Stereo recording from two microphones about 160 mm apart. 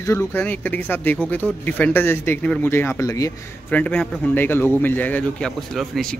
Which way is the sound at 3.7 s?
10° left (ahead or behind).